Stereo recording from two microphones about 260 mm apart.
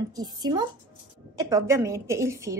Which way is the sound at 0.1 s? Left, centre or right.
Centre.